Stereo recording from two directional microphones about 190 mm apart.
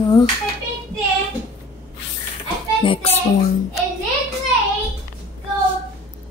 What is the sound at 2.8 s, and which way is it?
Child singing, 25° left (ahead or behind).